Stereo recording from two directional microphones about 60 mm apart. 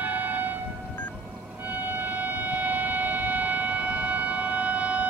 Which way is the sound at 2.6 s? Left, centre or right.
Right.